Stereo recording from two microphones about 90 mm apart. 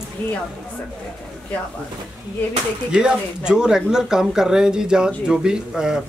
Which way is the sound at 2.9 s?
10° right (ahead or behind).